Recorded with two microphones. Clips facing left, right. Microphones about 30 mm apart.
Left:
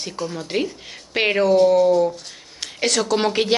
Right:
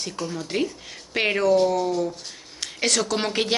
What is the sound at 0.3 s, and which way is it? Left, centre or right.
A woman's voice, centre.